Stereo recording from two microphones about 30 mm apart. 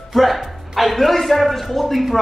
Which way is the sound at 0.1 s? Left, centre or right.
Centre.